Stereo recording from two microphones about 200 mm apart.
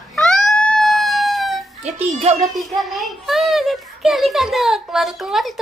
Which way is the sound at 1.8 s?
30° right (ahead or behind).